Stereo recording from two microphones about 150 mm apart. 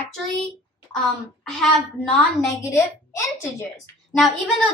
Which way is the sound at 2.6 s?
20° left (ahead or behind).